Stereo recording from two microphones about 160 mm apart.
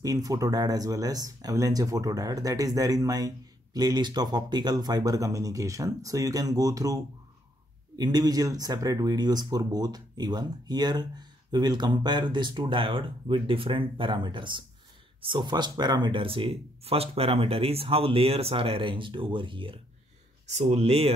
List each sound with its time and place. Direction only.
0.0 s speech: 20° right (ahead or behind)
20.4 s speech: 45° right (ahead or behind)